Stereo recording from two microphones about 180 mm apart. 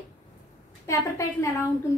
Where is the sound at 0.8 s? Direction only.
15° left (ahead or behind).